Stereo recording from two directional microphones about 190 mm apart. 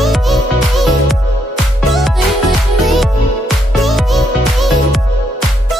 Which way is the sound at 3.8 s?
Centre (ahead or behind).